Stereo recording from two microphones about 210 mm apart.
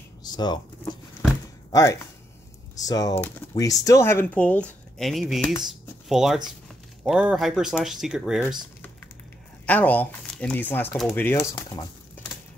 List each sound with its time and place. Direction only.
0.2 s a sound: 20° left (ahead or behind)
1.7 s speech: 15° left (ahead or behind); by 8.4 s centre (ahead or behind)
9.7 s speech: 5° left (ahead or behind)